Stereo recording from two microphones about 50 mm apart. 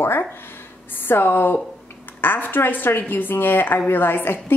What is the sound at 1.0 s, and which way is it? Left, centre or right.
A woman's voice, left.